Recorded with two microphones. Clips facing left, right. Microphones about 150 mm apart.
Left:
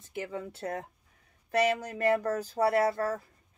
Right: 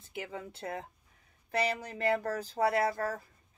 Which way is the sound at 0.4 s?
40° left (ahead or behind).